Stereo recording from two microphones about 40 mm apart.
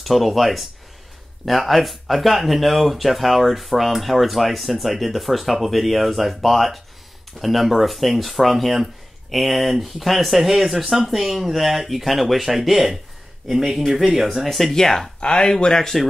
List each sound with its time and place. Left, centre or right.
0.0 s speech: centre
14.7 s speech: centre